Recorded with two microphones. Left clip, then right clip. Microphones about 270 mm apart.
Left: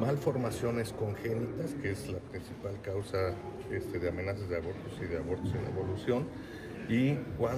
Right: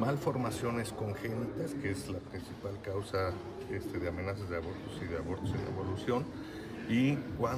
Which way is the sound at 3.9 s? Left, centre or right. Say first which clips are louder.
Left 3 dB; centre.